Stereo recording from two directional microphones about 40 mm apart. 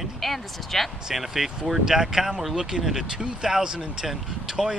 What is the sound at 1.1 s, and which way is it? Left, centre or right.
Speech, centre.